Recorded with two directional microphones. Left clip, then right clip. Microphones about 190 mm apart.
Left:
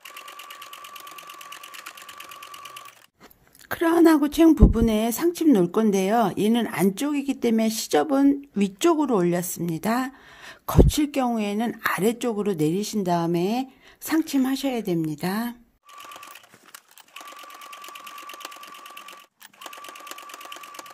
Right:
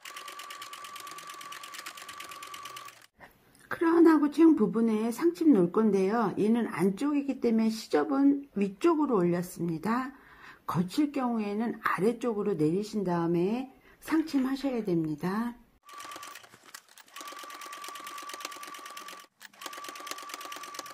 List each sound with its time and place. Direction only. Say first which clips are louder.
0.0 s sewing machine: left 2 dB; 5° left (ahead or behind)
3.6 s a woman's voice: left 4 dB; 55° left (ahead or behind)
17.1 s sewing machine: left 2 dB; 5° left (ahead or behind)
19.6 s a sound: left 2 dB; 5° left (ahead or behind)
20.0 s sewing machine: left 1 dB; 5° left (ahead or behind)